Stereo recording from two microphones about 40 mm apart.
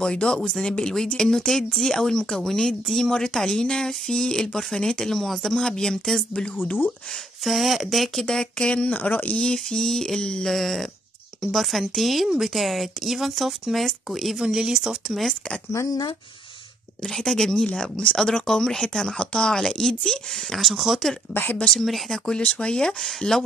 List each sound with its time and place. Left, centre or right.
0.0 s speech: left
4.5 s speech: centre
7.4 s speech: centre
8.3 s speech: centre
8.9 s speech: left
9.4 s speech: left
10.4 s speech: centre
14.4 s speech: centre
17.0 s speech: centre
20.5 s speech: centre
21.3 s a woman's voice: left
21.7 s speech: centre
22.4 s speech: left
23.0 s speech: centre